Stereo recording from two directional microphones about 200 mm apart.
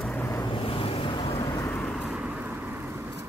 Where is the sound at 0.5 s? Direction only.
25° left (ahead or behind).